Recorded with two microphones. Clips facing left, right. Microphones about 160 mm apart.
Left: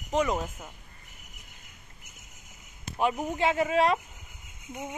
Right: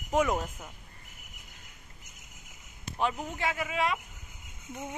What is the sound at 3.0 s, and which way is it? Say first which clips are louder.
Speech: left 5 dB; 15° left (ahead or behind).